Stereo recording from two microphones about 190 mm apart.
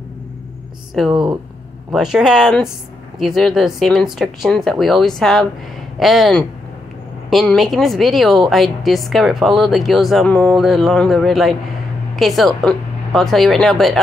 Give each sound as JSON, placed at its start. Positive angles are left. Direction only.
{"t": 1.1, "sound": "speech", "side_deg": -25}
{"t": 1.9, "sound": "a woman's voice", "side_deg": -5}